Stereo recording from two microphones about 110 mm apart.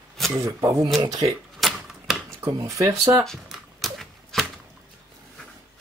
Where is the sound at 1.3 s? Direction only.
Centre (ahead or behind).